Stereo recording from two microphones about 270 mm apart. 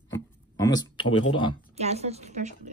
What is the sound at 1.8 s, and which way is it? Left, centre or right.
Speech, right.